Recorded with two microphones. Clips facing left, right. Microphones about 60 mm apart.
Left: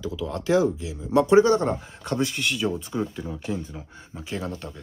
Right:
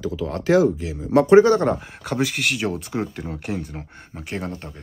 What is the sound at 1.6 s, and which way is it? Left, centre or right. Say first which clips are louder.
Speech: right 4 dB; right.